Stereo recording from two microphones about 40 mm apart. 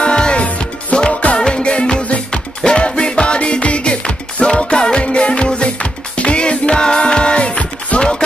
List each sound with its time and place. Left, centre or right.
0.0 s music: left